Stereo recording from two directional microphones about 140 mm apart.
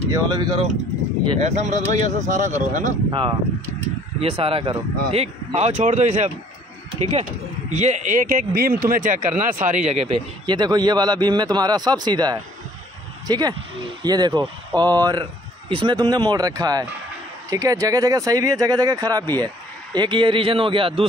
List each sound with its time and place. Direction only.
0.1 s a man's voice: 30° right (ahead or behind)
1.4 s speech: 55° right (ahead or behind)
4.2 s speech: 45° right (ahead or behind); by 9.8 s 70° right (ahead or behind)
9.8 s speech: 50° right (ahead or behind)
10.4 s a man's voice: 30° right (ahead or behind)